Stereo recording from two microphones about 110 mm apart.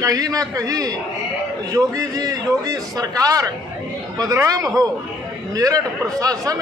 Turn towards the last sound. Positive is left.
turn(degrees=-30)  # may be behind; listen again after turning